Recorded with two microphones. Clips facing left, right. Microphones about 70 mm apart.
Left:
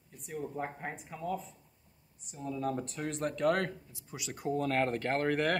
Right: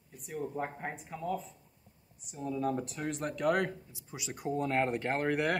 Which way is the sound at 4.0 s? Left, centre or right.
Right.